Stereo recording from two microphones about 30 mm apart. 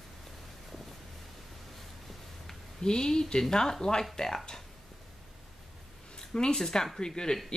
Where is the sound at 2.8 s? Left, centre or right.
Left.